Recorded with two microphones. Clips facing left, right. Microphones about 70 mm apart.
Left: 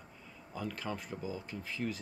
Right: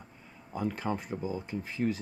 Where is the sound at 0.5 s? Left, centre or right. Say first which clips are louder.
Right 7 dB; right.